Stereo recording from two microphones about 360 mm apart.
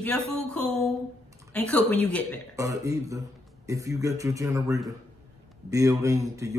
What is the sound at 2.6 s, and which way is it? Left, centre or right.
A man's voice, centre.